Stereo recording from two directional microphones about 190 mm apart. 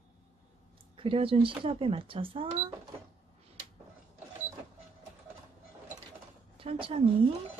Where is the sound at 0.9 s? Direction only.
30° right (ahead or behind).